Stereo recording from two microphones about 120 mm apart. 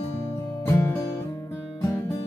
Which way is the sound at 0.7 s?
20° left (ahead or behind).